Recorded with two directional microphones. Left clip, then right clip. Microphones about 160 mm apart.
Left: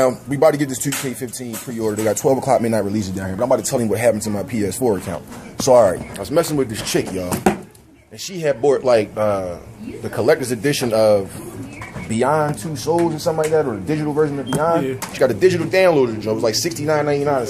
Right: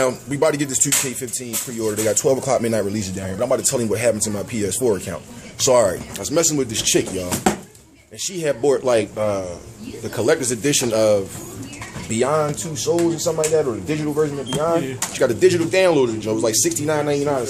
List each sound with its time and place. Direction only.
0.0 s speech: 5° right (ahead or behind)
5.9 s speech: 20° right (ahead or behind)